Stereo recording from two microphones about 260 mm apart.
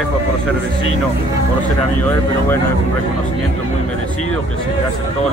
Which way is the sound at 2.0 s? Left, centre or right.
Centre.